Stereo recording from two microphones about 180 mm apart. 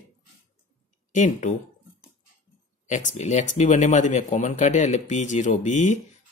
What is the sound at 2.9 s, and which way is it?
Speech, 45° left (ahead or behind).